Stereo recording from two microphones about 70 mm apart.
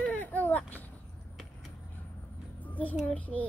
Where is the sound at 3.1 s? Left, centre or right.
Left.